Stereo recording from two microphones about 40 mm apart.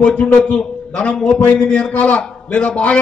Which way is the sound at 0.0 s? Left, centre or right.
Left.